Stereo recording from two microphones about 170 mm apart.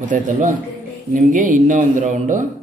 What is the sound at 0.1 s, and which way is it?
Speech, 50° right (ahead or behind).